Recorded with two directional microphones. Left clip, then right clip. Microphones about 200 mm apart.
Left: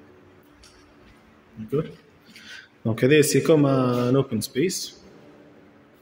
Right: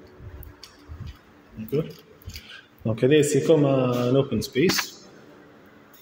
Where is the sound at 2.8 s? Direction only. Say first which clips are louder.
Left 1 dB; 30° left (ahead or behind).